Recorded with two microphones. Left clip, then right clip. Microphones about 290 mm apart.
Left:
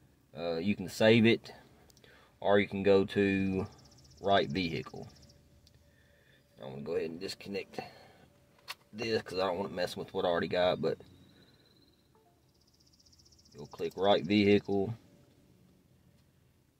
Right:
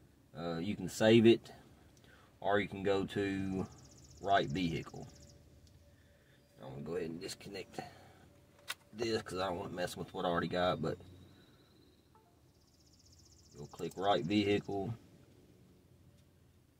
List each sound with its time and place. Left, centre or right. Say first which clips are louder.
0.3 s speech: left 6 dB; left
6.6 s speech: left 5 dB; left
8.9 s speech: left 4 dB; left
13.7 s speech: left 5 dB; left